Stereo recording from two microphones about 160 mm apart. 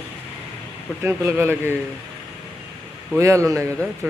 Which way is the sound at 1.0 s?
15° right (ahead or behind).